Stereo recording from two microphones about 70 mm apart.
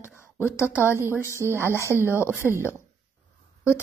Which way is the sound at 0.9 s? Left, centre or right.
Right.